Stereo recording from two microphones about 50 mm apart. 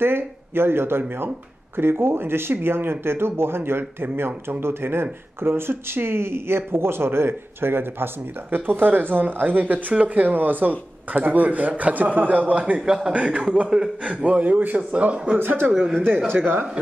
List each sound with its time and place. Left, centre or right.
0.0 s a man's voice: right
12.8 s speech: centre
13.1 s a man's voice: right
15.3 s speech: right
15.7 s speech: centre